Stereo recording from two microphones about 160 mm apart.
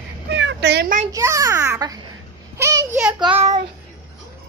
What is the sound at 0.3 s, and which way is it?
Cat, 90° right.